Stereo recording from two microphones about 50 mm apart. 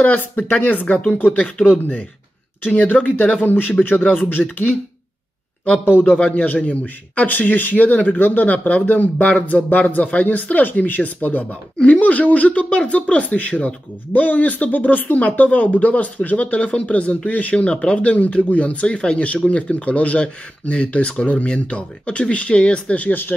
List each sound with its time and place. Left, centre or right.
0.0 s a man's voice: left